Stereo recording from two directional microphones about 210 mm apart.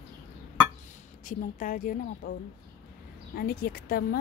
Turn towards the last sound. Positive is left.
turn(degrees=45)  # may be behind; listen again after turning